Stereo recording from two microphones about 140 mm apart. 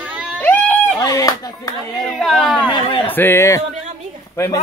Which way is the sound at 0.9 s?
25° left (ahead or behind).